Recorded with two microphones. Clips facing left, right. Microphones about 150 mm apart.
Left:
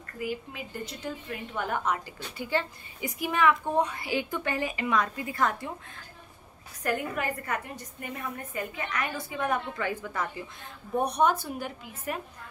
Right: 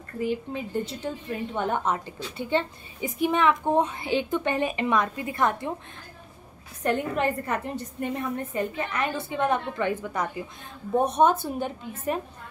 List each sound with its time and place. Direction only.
0.2 s a woman's voice: 30° right (ahead or behind)
6.8 s a woman's voice: 25° right (ahead or behind)